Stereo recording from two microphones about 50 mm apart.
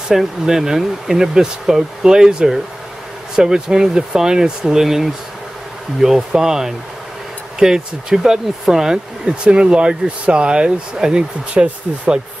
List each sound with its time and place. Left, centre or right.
0.1 s speech: centre